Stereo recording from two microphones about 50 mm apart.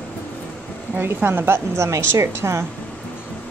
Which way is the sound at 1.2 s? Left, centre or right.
Right.